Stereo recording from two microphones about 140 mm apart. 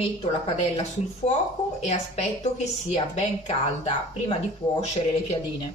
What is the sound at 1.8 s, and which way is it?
Speech, 50° left (ahead or behind).